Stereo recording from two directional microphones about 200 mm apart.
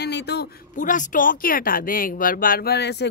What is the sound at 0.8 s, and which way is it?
Speech, 40° left (ahead or behind).